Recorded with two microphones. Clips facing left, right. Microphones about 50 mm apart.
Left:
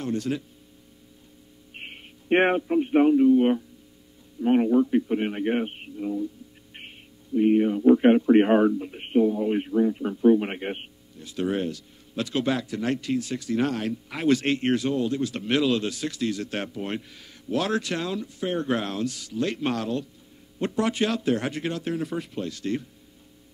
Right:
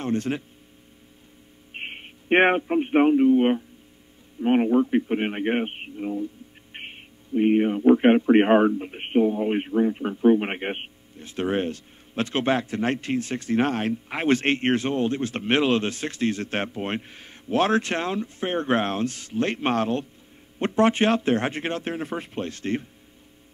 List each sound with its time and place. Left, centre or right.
0.0 s speech: right
1.7 s a man's voice: right